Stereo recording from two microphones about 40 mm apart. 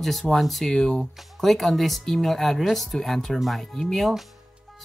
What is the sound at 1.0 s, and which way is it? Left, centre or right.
Speech, centre.